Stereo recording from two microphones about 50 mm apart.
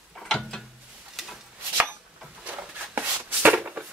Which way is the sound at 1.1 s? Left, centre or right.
Centre.